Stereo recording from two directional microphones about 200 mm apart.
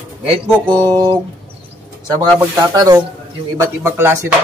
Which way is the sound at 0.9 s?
20° right (ahead or behind).